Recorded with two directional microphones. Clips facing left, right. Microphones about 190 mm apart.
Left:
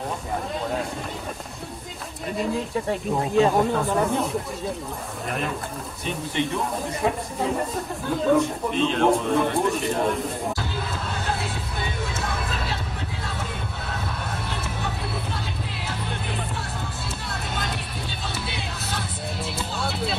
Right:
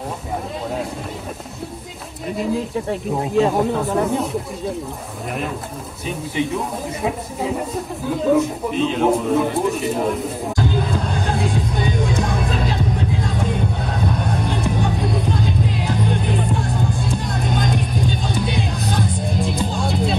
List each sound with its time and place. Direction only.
2.3 s speech: centre (ahead or behind)
6.0 s speech: 5° right (ahead or behind)
12.0 s music: 15° right (ahead or behind)
13.8 s music: 20° right (ahead or behind)
14.8 s music: 45° right (ahead or behind)
17.3 s music: 15° right (ahead or behind)
18.7 s music: 15° right (ahead or behind)